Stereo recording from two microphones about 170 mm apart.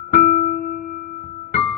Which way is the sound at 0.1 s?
50° left (ahead or behind).